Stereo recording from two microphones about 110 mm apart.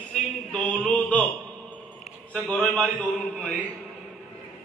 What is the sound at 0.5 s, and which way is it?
Speech, 10° left (ahead or behind).